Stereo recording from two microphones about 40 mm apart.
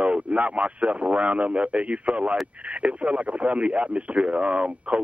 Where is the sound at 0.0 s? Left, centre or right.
Right.